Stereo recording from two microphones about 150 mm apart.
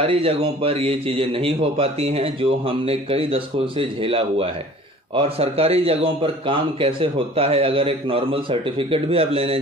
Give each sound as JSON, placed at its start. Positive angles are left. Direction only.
{"t": 0.0, "sound": "a man's voice", "side_deg": -40}